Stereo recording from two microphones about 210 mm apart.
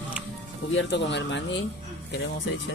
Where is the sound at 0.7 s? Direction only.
60° left (ahead or behind).